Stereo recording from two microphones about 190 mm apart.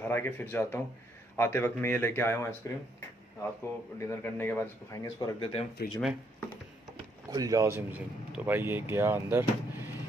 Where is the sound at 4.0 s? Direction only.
10° left (ahead or behind).